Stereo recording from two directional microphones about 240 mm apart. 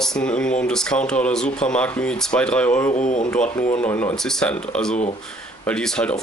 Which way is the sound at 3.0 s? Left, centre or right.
Left.